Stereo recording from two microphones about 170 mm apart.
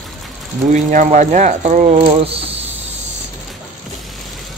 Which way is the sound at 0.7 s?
45° right (ahead or behind).